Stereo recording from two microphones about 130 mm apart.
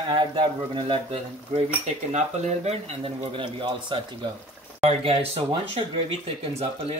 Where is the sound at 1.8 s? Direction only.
60° right (ahead or behind); by 3.9 s 40° right (ahead or behind).